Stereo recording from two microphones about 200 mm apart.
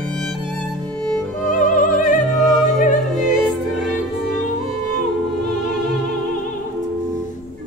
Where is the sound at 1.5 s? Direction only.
40° left (ahead or behind).